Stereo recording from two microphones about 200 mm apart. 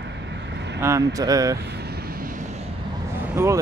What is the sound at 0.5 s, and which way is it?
Vehicle, 60° right (ahead or behind).